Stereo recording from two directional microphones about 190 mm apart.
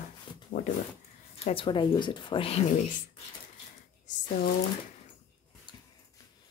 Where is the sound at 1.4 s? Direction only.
25° left (ahead or behind).